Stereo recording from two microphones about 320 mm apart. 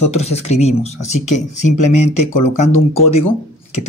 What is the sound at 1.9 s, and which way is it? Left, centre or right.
Speech, left.